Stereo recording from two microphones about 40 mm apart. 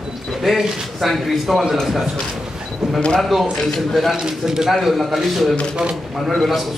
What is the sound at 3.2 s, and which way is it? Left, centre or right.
A man's voice, centre.